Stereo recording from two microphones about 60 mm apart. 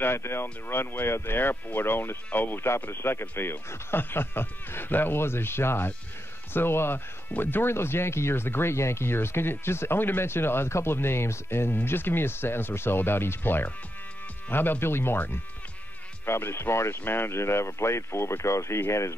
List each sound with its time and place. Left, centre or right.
0.0 s speech: left